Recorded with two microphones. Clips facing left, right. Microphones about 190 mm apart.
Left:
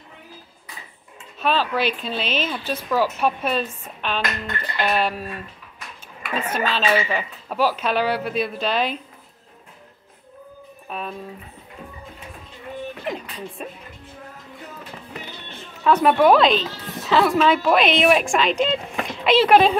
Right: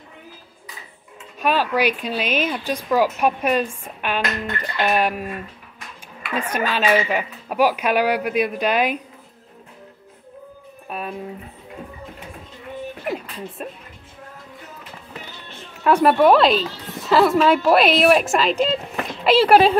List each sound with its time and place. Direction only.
1.4 s a woman's voice: 10° right (ahead or behind)
6.4 s a woman's voice: 10° right (ahead or behind)
10.9 s guitar: 10° right (ahead or behind)
13.0 s music: 5° right (ahead or behind)
15.8 s speech: 5° right (ahead or behind)